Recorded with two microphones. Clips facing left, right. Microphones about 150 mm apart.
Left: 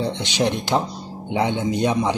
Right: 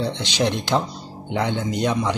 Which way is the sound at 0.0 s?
10° left (ahead or behind).